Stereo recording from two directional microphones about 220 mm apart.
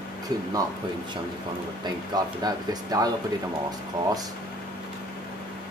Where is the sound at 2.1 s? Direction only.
20° right (ahead or behind).